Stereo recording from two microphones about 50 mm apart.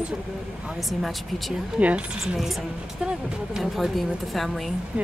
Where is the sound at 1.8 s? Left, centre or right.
Right.